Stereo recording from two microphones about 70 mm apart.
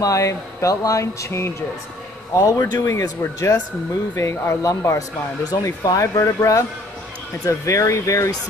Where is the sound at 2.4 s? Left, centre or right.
Left.